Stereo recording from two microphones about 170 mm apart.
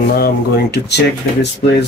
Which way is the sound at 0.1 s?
70° left (ahead or behind).